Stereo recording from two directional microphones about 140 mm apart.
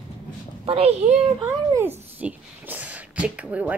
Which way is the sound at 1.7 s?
15° right (ahead or behind).